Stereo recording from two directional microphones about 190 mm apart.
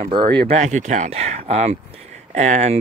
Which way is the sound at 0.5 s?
40° right (ahead or behind).